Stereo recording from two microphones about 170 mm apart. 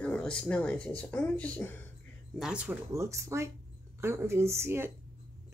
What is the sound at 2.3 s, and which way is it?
Speech, 5° right (ahead or behind).